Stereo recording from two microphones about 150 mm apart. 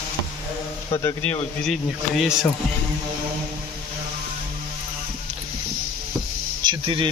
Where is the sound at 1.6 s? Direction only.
Centre (ahead or behind).